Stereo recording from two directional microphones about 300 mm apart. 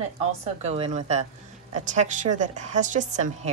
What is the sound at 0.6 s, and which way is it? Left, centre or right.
A woman's voice, right.